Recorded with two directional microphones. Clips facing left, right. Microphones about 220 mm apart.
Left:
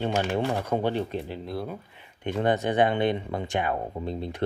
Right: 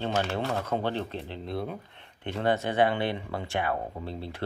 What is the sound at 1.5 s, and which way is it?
Speech, centre (ahead or behind).